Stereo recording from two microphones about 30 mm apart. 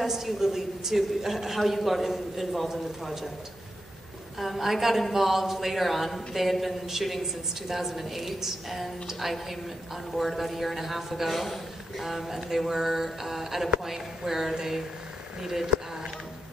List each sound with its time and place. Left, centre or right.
0.0 s a man's voice: centre
4.4 s a man's voice: centre